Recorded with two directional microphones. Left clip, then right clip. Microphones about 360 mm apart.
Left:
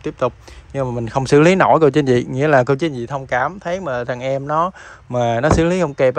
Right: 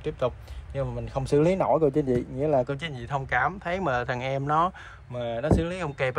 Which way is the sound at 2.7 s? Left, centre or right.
Centre.